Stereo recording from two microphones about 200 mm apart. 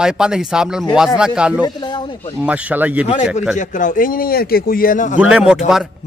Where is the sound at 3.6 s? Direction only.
40° left (ahead or behind).